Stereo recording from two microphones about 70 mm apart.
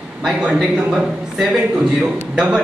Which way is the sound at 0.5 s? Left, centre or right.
Centre.